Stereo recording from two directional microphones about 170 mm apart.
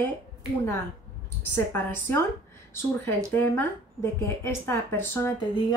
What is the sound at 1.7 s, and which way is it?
Speech, 15° left (ahead or behind).